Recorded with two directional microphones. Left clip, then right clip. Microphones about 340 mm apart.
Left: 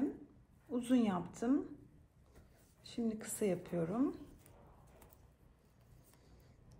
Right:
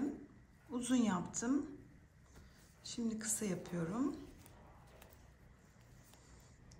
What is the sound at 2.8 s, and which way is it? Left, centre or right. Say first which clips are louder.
A woman's voice: left 1 dB; centre.